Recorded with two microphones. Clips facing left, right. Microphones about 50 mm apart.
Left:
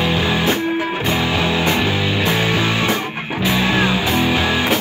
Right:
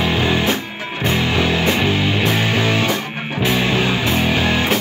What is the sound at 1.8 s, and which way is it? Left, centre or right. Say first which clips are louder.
Music: right 1 dB; right.